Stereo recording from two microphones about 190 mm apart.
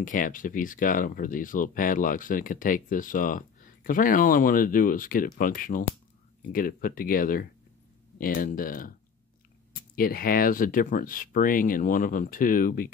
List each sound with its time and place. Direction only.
0.0 s speech: 45° left (ahead or behind)
9.9 s speech: 50° left (ahead or behind)